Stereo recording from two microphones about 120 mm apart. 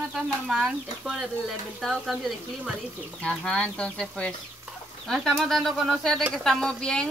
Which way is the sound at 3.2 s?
10° left (ahead or behind).